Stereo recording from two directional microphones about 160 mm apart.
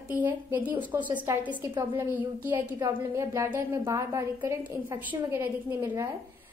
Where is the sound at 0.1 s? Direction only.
10° right (ahead or behind).